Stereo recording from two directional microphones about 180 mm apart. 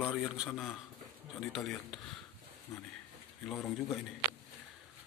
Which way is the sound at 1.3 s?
Centre (ahead or behind).